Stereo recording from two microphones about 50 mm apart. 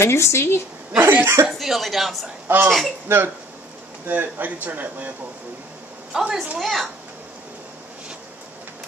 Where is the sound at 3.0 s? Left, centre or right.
Right.